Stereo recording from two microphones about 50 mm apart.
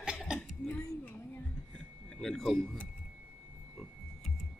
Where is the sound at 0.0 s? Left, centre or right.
Centre.